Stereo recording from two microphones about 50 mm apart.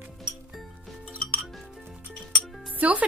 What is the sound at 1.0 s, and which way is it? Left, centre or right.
Music, right.